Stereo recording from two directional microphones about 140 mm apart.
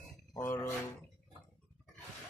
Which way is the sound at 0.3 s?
20° left (ahead or behind).